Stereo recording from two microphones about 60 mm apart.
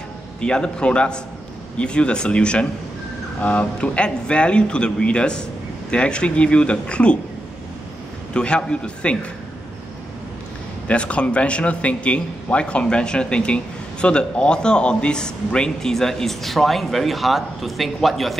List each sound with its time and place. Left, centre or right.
0.4 s a man's voice: centre
8.3 s a man's voice: centre
10.9 s a man's voice: centre